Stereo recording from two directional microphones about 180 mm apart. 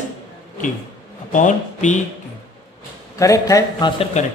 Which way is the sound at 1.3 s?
45° left (ahead or behind).